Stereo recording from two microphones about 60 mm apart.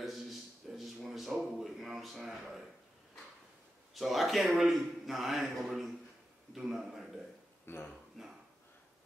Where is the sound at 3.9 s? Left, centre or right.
Centre.